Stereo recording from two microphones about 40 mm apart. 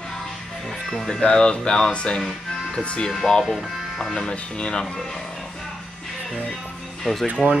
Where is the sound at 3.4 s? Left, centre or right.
Centre.